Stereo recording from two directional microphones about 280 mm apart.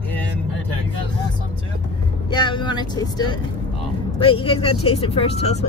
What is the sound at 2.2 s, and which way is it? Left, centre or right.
Speech, centre.